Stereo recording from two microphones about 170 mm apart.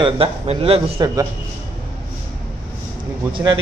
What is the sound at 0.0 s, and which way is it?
Speech, 35° right (ahead or behind).